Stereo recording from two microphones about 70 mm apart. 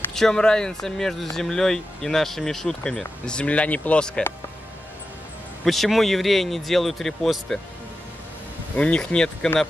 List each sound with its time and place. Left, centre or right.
0.1 s speech: centre
5.7 s speech: centre
8.7 s speech: centre